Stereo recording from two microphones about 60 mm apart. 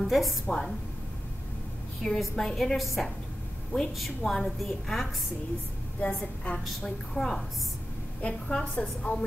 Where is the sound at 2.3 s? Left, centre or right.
Centre.